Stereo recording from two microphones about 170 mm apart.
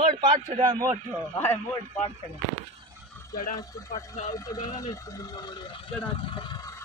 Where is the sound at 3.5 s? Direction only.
20° left (ahead or behind).